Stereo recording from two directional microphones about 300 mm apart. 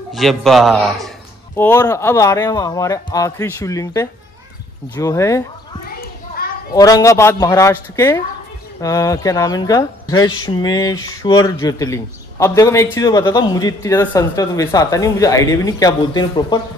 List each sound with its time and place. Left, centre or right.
0.1 s a man's voice: centre
5.9 s children playing: left
6.7 s a man's voice: centre